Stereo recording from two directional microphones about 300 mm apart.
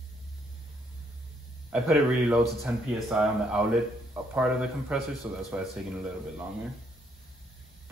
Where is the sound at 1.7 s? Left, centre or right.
Centre.